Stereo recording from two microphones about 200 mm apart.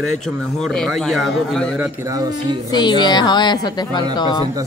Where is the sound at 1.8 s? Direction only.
15° right (ahead or behind).